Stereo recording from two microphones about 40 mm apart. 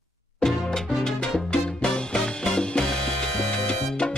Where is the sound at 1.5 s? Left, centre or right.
Left.